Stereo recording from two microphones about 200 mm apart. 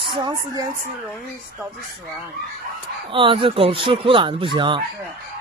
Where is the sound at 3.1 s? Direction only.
25° right (ahead or behind).